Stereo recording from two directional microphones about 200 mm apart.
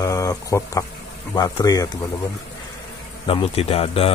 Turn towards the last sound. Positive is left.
turn(degrees=30)  # may be behind; listen again after turning